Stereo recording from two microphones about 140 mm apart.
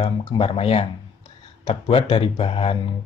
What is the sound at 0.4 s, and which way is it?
Speech, 45° left (ahead or behind).